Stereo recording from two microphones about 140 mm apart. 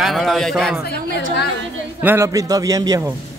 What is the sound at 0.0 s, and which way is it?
Speech, centre (ahead or behind).